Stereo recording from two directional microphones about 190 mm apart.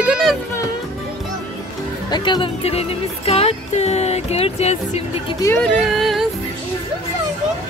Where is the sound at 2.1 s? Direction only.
25° left (ahead or behind).